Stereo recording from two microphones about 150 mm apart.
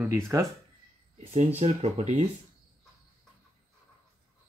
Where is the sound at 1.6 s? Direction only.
45° right (ahead or behind).